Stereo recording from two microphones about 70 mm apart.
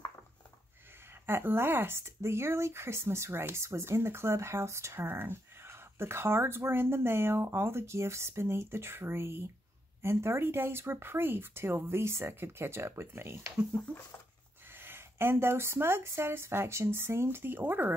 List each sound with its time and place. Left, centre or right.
1.2 s speech: right
13.8 s a sound: centre
14.7 s speech: right